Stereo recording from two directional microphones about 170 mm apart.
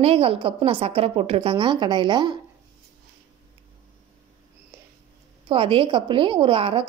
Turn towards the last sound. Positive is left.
turn(degrees=-30)  # may be behind; listen again after turning